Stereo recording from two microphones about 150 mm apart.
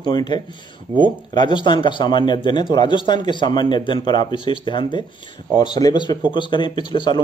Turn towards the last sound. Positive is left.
turn(degrees=30)  # may be behind; listen again after turning